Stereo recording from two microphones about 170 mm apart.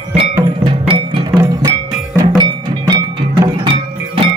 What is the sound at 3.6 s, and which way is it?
Music, 30° right (ahead or behind).